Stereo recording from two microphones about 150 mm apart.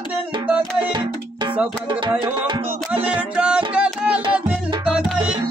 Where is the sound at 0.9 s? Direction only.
30° right (ahead or behind).